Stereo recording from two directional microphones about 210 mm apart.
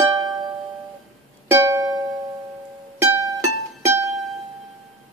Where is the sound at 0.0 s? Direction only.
15° right (ahead or behind).